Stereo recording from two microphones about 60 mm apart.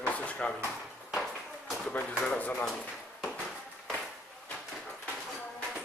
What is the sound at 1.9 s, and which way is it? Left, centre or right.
Speech, left.